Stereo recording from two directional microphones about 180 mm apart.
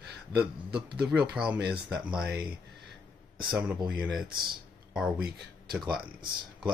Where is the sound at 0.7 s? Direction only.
65° right (ahead or behind).